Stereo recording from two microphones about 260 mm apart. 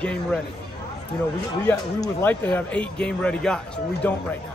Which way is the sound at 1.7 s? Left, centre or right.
Centre.